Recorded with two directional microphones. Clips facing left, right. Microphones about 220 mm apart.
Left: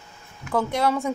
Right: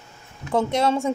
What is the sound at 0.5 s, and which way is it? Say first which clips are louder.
Speech: right 2 dB; 25° right (ahead or behind).